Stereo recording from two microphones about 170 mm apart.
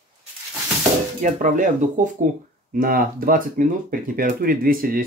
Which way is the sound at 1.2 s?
50° right (ahead or behind).